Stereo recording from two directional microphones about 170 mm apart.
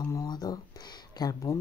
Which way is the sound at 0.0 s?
20° left (ahead or behind).